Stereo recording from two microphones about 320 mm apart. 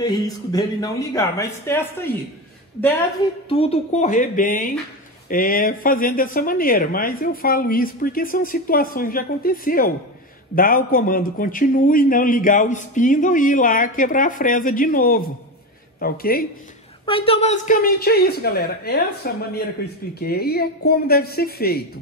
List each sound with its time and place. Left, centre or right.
0.0 s speech: centre
3.4 s a man's voice: centre
17.0 s a man's voice: centre